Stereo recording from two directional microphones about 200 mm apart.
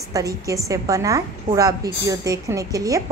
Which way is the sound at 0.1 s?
15° right (ahead or behind).